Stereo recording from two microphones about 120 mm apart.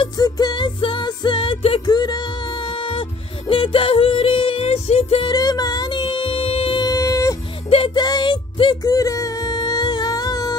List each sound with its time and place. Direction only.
0.2 s music: 35° left (ahead or behind)
1.9 s music: 35° left (ahead or behind); by 5.2 s 60° left (ahead or behind)
5.2 s music: 35° left (ahead or behind); by 6.8 s 50° left (ahead or behind)
6.8 s a sound: 30° left (ahead or behind)
7.9 s music: 35° left (ahead or behind)
8.8 s music: 30° left (ahead or behind)